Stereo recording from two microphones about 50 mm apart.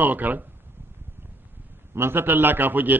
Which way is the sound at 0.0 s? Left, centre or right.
Right.